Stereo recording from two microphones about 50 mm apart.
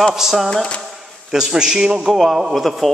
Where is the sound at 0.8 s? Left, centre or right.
Centre.